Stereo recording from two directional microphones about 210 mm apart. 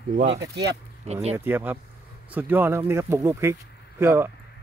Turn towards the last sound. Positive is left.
turn(degrees=-10)  # may be behind; listen again after turning